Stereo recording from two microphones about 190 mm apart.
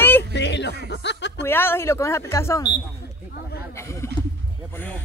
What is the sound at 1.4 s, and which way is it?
Speech, 10° left (ahead or behind).